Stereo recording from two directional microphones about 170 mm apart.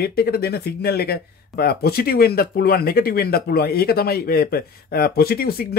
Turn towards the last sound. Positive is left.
turn(degrees=65)  # may be behind; listen again after turning